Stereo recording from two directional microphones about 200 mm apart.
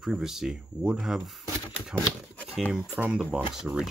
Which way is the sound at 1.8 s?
Centre (ahead or behind).